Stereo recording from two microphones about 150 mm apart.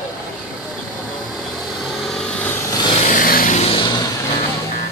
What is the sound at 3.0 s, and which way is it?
Vehicle, 70° left (ahead or behind).